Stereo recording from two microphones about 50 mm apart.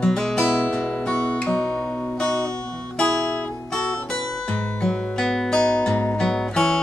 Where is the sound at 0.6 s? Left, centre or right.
Left.